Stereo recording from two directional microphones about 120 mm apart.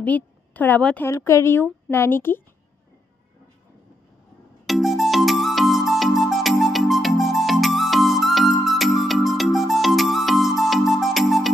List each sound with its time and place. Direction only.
0.0 s a woman's voice: 15° left (ahead or behind)
1.1 s speech: 25° left (ahead or behind)
4.6 s music: centre (ahead or behind)